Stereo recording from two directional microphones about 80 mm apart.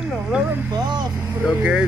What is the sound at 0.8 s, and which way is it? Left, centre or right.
Speech, right.